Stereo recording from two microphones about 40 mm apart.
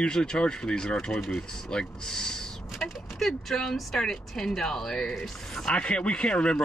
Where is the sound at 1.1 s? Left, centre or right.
Centre.